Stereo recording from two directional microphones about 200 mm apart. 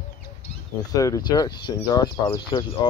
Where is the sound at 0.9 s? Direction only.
15° left (ahead or behind).